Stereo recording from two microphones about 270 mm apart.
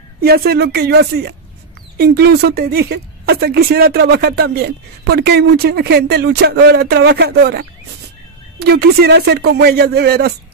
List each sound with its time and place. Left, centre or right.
0.2 s speech: right